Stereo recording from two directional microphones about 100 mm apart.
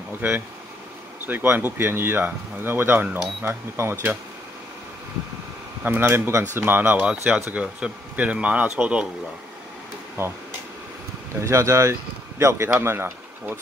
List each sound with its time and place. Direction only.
1.2 s speech: 20° right (ahead or behind)
5.9 s speech: 20° right (ahead or behind)
10.2 s speech: 25° right (ahead or behind)
11.4 s speech: 30° right (ahead or behind)